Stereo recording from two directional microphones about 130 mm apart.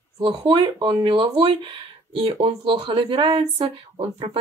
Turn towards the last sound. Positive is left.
turn(degrees=-50)  # may be behind; listen again after turning